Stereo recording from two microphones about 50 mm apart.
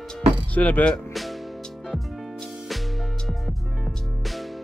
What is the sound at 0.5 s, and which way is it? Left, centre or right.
Speech, left.